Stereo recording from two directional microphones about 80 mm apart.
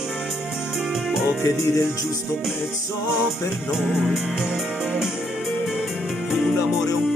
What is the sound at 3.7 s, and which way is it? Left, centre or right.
Music, centre.